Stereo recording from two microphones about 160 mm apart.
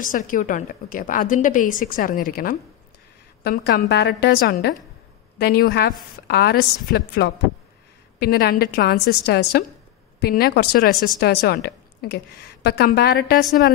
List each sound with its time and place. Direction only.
0.0 s a woman's voice: 55° left (ahead or behind); by 9.7 s 90° left
10.2 s a woman's voice: 75° left (ahead or behind)